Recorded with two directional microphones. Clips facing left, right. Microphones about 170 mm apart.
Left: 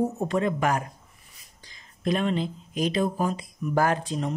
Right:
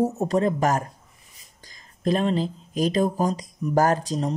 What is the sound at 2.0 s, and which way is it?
Speech, 35° right (ahead or behind).